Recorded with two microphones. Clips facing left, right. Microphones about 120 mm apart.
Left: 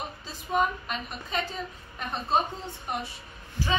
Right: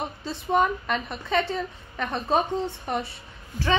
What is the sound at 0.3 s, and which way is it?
A woman's voice, 85° right.